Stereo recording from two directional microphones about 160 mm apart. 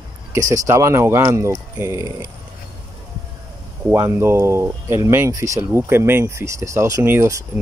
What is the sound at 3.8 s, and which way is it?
Speech, 20° right (ahead or behind).